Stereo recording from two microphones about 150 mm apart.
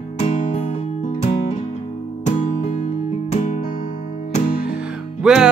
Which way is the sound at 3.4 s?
60° left (ahead or behind).